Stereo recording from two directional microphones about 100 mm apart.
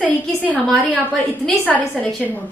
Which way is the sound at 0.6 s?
15° left (ahead or behind).